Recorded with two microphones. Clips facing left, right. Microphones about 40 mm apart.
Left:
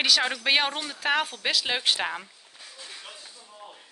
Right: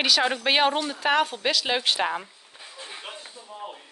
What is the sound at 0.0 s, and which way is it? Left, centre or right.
A woman's voice, centre.